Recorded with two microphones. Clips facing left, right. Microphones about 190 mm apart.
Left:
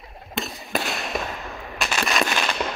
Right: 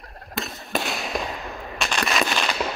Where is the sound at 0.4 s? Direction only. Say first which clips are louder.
Even; centre (ahead or behind).